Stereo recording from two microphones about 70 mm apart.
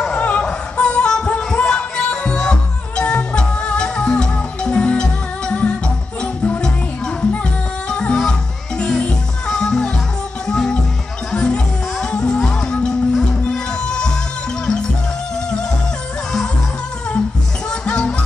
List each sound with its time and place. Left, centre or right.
0.1 s music: centre
7.9 s music: centre
17.6 s music: centre